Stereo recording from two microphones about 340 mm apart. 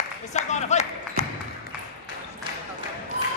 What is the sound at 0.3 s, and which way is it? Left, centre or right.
Speech, centre.